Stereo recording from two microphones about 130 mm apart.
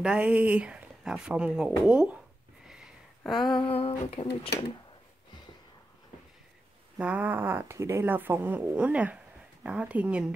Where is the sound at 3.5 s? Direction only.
45° left (ahead or behind).